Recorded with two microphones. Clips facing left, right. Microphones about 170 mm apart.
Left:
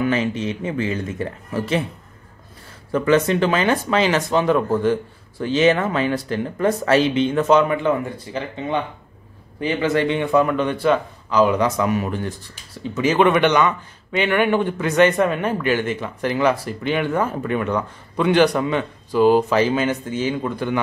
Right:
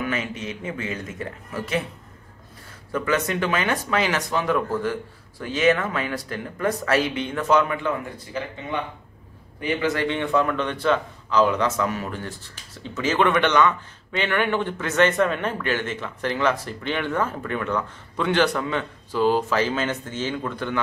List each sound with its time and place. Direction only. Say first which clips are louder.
0.0 s speech: left 7 dB; 30° left (ahead or behind)
2.9 s speech: left 7 dB; 30° left (ahead or behind)
10.0 s speech: left 4 dB; 10° left (ahead or behind)